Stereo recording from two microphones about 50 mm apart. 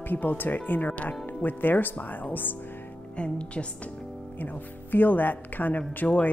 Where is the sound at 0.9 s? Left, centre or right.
Left.